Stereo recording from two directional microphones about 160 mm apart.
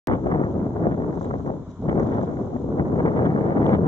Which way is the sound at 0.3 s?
25° left (ahead or behind).